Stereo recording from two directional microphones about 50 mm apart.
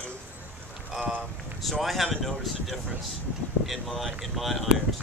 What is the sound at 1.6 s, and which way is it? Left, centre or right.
Speech, centre.